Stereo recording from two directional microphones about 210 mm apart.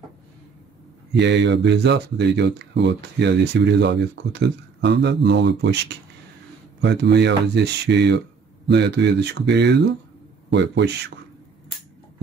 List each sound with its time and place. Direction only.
1.2 s speech: 55° right (ahead or behind)